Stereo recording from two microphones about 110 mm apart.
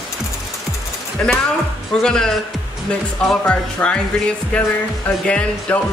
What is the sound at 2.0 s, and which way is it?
Speech, 5° left (ahead or behind).